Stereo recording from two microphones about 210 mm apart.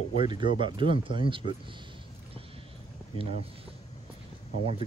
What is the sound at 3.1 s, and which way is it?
Speech, 25° right (ahead or behind).